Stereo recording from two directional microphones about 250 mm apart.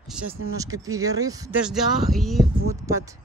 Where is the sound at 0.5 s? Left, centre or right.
Centre.